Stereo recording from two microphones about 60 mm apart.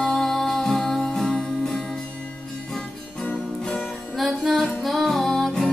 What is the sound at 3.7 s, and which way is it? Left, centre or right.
Music, centre.